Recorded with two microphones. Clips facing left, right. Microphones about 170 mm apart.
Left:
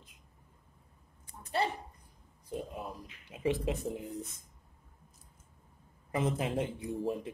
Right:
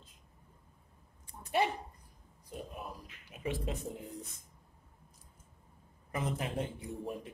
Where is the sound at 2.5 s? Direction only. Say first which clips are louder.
Left 4 dB; 25° left (ahead or behind).